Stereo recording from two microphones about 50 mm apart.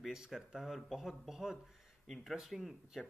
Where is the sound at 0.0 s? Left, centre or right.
Centre.